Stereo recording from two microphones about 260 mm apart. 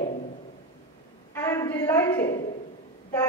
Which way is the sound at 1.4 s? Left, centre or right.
Centre.